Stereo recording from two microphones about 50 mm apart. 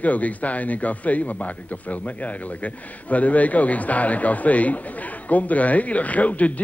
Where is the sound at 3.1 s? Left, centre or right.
Left.